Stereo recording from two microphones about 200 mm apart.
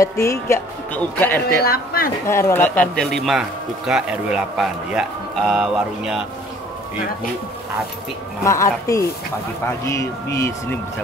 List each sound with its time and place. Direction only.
0.0 s speech: 15° left (ahead or behind)
1.6 s speech: 50° left (ahead or behind)
2.2 s a man's voice: 15° left (ahead or behind); by 6.2 s centre (ahead or behind)
8.5 s speech: 15° left (ahead or behind)